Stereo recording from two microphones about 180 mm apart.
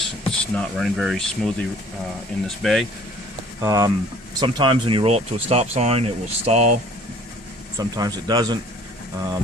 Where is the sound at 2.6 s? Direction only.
Centre (ahead or behind).